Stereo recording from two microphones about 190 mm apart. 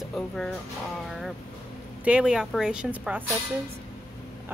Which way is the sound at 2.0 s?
5° right (ahead or behind).